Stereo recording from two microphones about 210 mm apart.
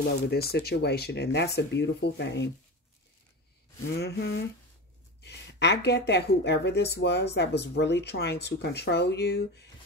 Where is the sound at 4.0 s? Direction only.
50° left (ahead or behind).